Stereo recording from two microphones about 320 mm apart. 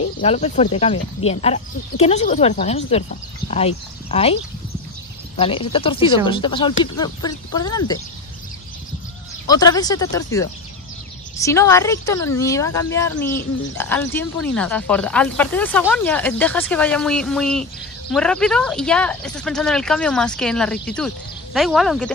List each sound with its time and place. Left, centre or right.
0.2 s speech: centre
9.5 s speech: centre